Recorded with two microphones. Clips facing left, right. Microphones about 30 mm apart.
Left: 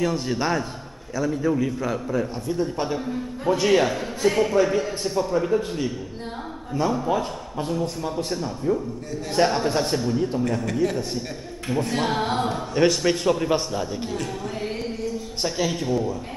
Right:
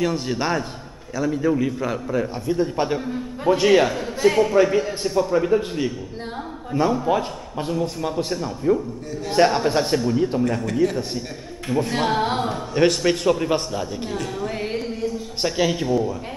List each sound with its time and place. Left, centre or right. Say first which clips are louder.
0.0 s a man's voice: right 1 dB; centre
7.7 s a man's voice: right 3 dB; centre
14.8 s a sound: right 2 dB; centre